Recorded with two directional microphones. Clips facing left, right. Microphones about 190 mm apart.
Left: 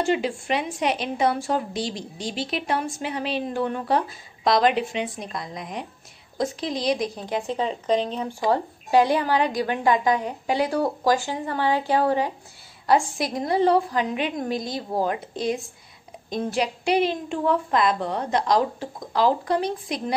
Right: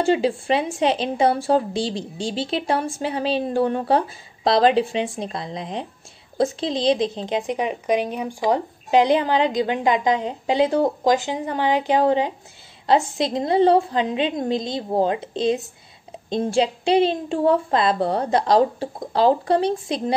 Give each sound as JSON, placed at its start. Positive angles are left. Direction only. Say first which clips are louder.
{"t": 0.0, "sound": "speech", "louder": "right 4 dB", "side_deg": -30}